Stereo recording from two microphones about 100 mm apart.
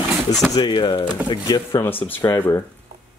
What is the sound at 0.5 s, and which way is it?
Speech, 50° left (ahead or behind).